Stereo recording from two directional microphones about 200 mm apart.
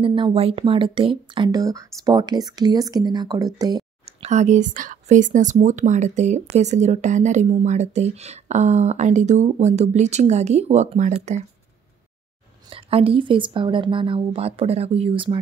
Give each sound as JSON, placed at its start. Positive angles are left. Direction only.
{"t": 0.0, "sound": "speech", "side_deg": -25}
{"t": 4.2, "sound": "speech", "side_deg": -35}
{"t": 12.6, "sound": "speech", "side_deg": -25}